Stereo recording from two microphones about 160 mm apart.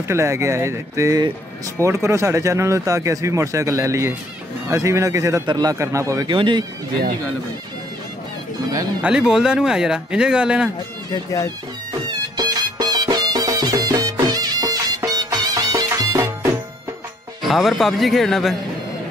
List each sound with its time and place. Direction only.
0.1 s speech: 15° right (ahead or behind)
6.2 s speech: 30° right (ahead or behind)
9.0 s speech: 5° right (ahead or behind)
11.1 s speech: 20° left (ahead or behind)
12.4 s music: 25° right (ahead or behind)
17.4 s speech: centre (ahead or behind)